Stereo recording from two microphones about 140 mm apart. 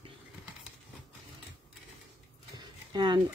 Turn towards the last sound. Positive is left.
turn(degrees=-30)  # may be behind; listen again after turning